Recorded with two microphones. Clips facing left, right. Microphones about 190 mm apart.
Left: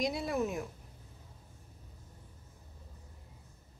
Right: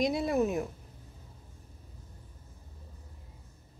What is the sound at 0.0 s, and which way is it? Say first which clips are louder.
Speech: right 5 dB; 25° right (ahead or behind).